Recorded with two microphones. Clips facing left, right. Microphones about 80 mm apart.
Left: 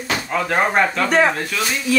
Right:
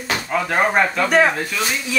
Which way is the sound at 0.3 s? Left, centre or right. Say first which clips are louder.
Even; centre.